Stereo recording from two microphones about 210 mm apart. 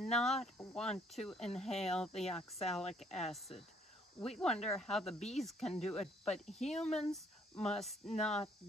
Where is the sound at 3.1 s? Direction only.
30° left (ahead or behind).